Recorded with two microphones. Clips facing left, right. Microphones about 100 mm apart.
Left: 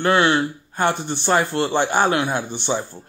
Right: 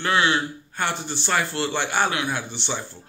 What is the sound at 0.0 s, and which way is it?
Speech, 45° left (ahead or behind).